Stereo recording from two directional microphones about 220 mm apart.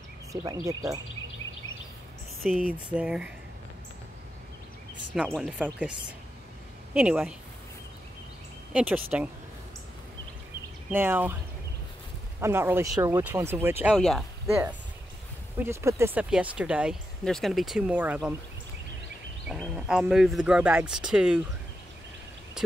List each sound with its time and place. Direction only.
0.4 s speech: 15° right (ahead or behind)
2.4 s speech: 5° right (ahead or behind)
5.1 s speech: 5° right (ahead or behind)
8.7 s speech: 5° right (ahead or behind)
10.9 s speech: 10° right (ahead or behind)
12.4 s speech: 10° right (ahead or behind)
15.6 s speech: 10° right (ahead or behind)
19.5 s speech: 5° right (ahead or behind)